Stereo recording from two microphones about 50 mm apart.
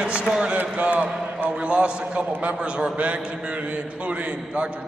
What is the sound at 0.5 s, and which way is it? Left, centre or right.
A man's voice, right.